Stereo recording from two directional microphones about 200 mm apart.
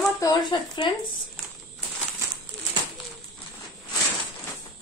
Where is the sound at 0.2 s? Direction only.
20° left (ahead or behind).